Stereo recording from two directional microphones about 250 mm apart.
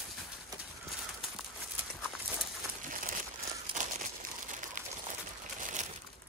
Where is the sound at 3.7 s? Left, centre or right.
Right.